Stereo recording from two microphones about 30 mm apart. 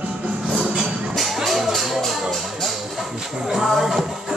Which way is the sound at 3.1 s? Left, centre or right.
Right.